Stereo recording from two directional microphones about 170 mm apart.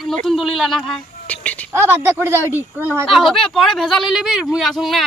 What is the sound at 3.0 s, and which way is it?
Speech, centre (ahead or behind).